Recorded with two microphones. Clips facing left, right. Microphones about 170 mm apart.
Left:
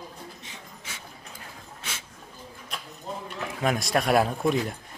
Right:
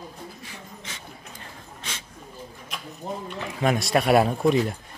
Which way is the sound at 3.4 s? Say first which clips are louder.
Right 3 dB; centre (ahead or behind).